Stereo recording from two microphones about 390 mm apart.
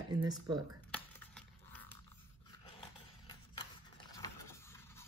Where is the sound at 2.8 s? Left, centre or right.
Centre.